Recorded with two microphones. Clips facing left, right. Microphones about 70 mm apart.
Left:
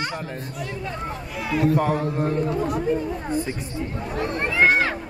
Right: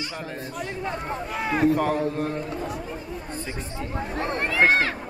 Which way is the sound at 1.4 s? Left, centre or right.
Right.